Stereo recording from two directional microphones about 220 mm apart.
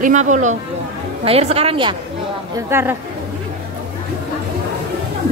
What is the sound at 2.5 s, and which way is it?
Speech, 10° right (ahead or behind).